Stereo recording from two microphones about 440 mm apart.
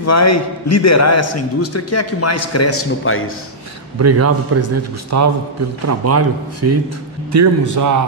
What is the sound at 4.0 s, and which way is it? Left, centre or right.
A man's voice, right.